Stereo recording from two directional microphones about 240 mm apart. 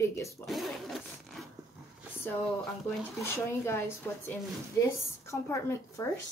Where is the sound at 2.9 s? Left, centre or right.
Centre.